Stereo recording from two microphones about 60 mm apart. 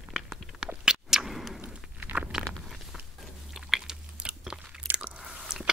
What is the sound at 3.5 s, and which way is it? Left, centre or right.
Chewing, centre.